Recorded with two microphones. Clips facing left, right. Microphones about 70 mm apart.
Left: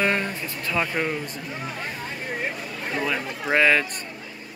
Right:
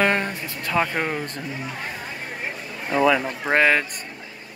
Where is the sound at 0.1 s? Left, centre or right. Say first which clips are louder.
Right 2 dB; right.